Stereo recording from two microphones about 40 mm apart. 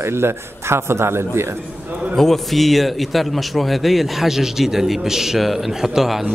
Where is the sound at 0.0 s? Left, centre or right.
Right.